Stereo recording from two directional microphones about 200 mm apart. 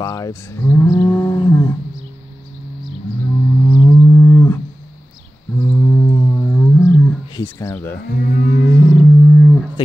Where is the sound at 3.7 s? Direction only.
15° left (ahead or behind).